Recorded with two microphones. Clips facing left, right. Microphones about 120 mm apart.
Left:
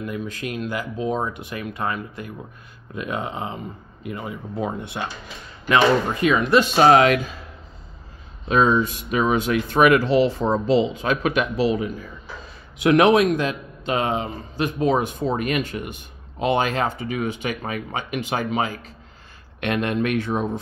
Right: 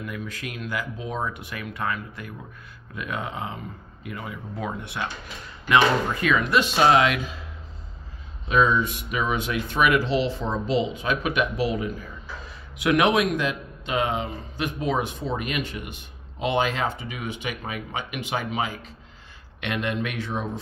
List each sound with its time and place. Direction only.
0.0 s speech: 25° left (ahead or behind)
6.3 s speech: 40° left (ahead or behind)
8.5 s a man's voice: 35° left (ahead or behind)
12.8 s a man's voice: 35° left (ahead or behind); by 20.4 s 50° left (ahead or behind)